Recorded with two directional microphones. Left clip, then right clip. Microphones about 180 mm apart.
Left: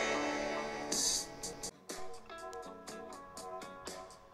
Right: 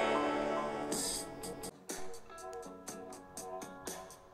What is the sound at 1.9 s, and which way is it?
Music, 10° right (ahead or behind).